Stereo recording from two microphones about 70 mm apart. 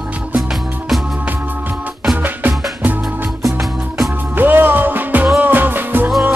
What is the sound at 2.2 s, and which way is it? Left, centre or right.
Music, right.